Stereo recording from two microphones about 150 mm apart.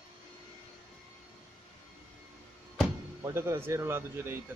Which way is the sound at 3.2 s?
15° right (ahead or behind).